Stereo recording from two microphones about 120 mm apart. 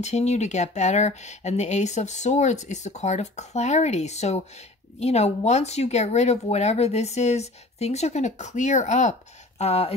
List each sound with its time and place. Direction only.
0.0 s speech: 70° left (ahead or behind)
9.6 s speech: 60° left (ahead or behind)